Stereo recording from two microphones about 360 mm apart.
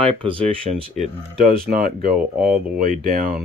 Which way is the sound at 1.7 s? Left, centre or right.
Right.